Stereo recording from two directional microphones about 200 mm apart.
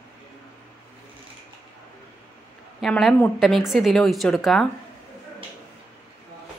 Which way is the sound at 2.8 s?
Centre (ahead or behind).